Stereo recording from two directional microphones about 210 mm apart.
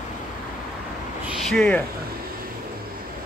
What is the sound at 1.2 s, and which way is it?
Speech, centre (ahead or behind).